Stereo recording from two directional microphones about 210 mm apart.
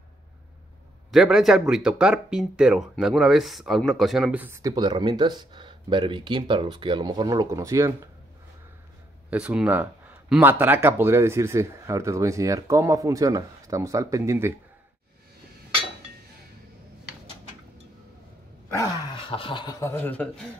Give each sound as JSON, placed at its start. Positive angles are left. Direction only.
{"t": 1.1, "sound": "speech", "side_deg": 0}
{"t": 9.3, "sound": "speech", "side_deg": -5}
{"t": 18.8, "sound": "a man's voice", "side_deg": 20}